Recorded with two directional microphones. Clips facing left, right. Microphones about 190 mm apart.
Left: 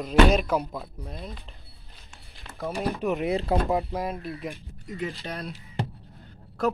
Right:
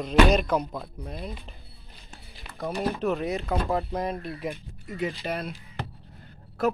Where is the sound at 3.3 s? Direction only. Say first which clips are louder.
Left 3 dB; 30° left (ahead or behind).